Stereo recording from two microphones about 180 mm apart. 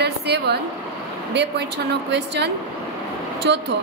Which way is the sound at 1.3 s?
70° right (ahead or behind).